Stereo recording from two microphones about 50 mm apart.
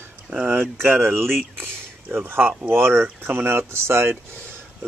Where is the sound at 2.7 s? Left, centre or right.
Right.